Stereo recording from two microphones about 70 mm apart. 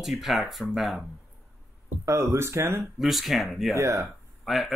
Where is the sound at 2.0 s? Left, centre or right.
Right.